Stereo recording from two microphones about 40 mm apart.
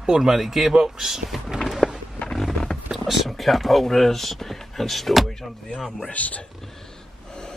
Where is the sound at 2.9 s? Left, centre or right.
Centre.